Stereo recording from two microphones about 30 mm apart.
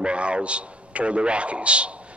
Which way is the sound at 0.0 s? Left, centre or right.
Right.